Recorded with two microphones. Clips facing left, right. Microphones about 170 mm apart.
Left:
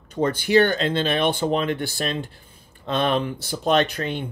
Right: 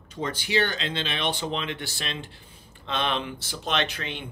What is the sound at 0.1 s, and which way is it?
Speech, 55° left (ahead or behind).